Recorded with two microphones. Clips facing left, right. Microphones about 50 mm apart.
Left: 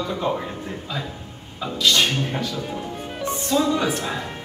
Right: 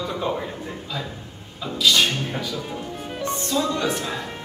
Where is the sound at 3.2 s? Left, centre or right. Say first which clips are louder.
Left 2 dB; centre.